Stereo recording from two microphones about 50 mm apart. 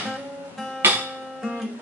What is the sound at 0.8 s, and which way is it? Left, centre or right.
Guitar, right.